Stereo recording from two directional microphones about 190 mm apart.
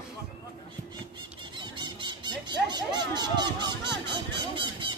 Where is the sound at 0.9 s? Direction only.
25° right (ahead or behind).